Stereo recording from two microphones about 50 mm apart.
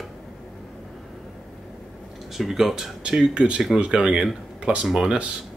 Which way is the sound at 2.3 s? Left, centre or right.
Centre.